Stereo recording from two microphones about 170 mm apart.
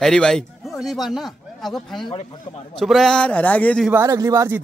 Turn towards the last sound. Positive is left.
turn(degrees=-20)  # may be behind; listen again after turning